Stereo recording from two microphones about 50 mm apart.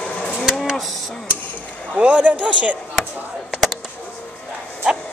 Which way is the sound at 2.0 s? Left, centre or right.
Right.